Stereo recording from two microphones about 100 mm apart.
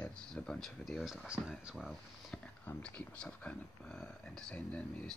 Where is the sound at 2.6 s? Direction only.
15° left (ahead or behind).